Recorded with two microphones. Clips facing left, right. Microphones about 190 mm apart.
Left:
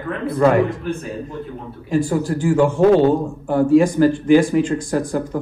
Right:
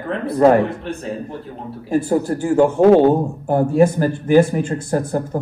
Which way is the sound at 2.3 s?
40° right (ahead or behind).